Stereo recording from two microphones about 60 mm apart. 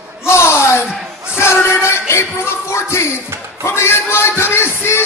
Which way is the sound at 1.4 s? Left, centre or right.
Left.